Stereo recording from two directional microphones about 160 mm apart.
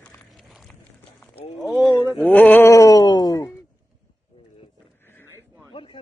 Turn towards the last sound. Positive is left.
turn(degrees=35)  # may be behind; listen again after turning